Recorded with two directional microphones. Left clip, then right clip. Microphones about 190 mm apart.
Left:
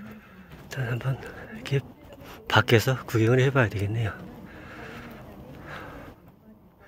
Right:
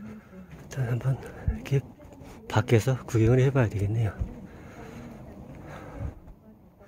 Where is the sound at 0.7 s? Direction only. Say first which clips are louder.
Left 2 dB; 20° right (ahead or behind).